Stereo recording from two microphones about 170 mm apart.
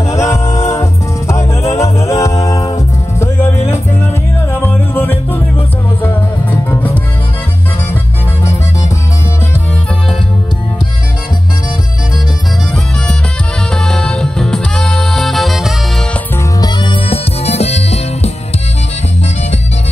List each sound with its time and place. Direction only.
0.1 s music: 15° left (ahead or behind)
4.5 s music: 10° left (ahead or behind)
6.7 s music: 10° left (ahead or behind)
13.7 s music: 5° left (ahead or behind)
16.6 s music: 30° left (ahead or behind)